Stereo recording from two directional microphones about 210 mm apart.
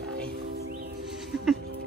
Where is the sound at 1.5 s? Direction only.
45° right (ahead or behind).